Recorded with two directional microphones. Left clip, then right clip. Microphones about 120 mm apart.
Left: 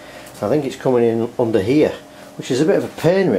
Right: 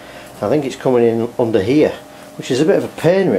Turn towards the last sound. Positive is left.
turn(degrees=15)  # may be behind; listen again after turning